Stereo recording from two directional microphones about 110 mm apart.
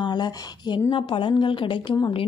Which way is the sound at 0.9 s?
50° left (ahead or behind).